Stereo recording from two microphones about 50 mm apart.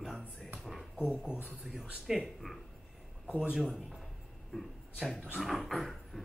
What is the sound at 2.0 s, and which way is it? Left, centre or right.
Speech, centre.